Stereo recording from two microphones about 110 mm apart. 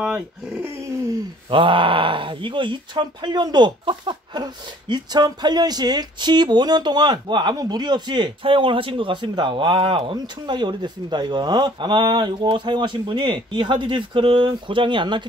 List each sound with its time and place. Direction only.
0.0 s speech: 5° right (ahead or behind)
0.7 s a sound: 25° right (ahead or behind)
1.5 s speech: 50° right (ahead or behind)
10.1 s speech: 40° right (ahead or behind)